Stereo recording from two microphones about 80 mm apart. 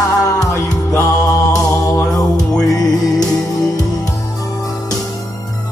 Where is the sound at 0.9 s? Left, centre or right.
Left.